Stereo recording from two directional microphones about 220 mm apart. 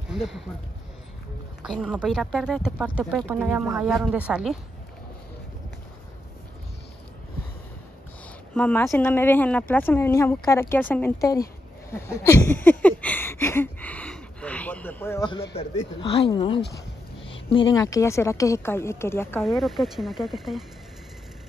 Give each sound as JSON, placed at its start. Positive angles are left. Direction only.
{"t": 0.1, "sound": "speech", "side_deg": 0}
{"t": 1.6, "sound": "speech", "side_deg": -5}
{"t": 8.5, "sound": "speech", "side_deg": 5}
{"t": 11.9, "sound": "a sound", "side_deg": 10}
{"t": 15.5, "sound": "speech", "side_deg": 25}
{"t": 19.4, "sound": "speech", "side_deg": 0}